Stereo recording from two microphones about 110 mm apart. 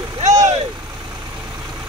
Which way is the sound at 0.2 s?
90° right.